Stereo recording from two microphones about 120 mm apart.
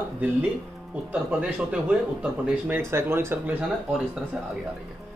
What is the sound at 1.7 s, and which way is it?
A man's voice, 10° right (ahead or behind).